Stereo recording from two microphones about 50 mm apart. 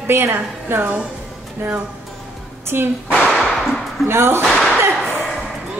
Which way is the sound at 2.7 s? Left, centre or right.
Right.